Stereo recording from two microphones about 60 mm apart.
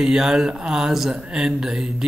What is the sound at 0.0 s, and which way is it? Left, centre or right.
Speech, centre.